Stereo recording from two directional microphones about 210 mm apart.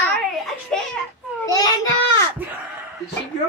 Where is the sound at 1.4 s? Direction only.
15° left (ahead or behind).